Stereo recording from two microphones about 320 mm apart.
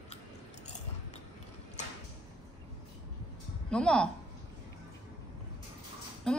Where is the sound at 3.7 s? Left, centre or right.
Centre.